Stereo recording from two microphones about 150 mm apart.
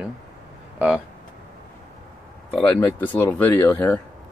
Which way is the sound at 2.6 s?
20° left (ahead or behind).